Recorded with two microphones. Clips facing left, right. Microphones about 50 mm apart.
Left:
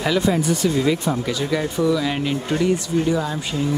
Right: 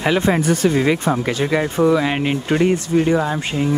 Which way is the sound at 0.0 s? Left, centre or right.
Right.